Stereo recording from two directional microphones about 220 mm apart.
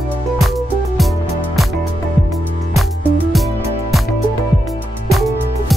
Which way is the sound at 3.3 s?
Centre (ahead or behind).